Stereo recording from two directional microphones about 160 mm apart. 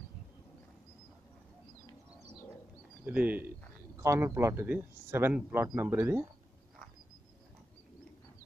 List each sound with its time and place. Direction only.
3.1 s speech: 10° right (ahead or behind)